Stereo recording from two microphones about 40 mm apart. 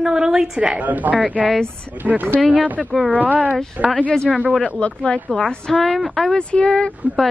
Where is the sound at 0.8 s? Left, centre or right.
Right.